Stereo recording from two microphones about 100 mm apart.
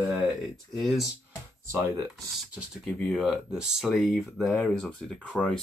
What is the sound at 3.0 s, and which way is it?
Speech, centre (ahead or behind).